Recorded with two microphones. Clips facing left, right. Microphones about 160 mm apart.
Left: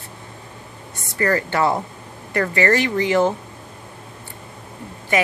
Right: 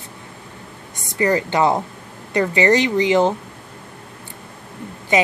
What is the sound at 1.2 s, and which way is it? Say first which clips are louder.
A woman's voice: right 2 dB; 20° right (ahead or behind).